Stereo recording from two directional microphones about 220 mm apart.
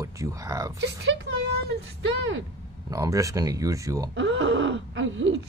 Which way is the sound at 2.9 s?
15° right (ahead or behind).